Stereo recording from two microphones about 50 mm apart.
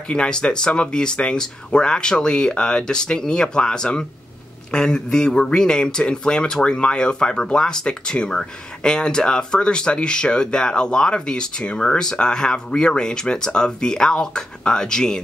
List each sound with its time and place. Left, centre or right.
0.1 s speech: centre